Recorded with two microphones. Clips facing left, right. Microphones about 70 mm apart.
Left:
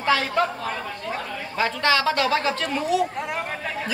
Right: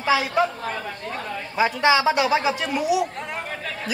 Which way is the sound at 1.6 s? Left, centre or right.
Centre.